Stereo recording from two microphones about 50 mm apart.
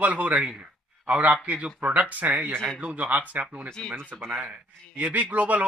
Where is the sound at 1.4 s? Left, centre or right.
Right.